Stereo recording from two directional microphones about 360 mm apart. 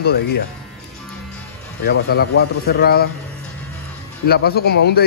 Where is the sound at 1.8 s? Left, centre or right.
Left.